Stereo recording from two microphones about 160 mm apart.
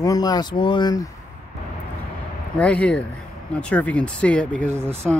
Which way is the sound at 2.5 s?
10° left (ahead or behind).